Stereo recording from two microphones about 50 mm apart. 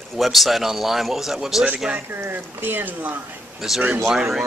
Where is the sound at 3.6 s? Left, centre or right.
Centre.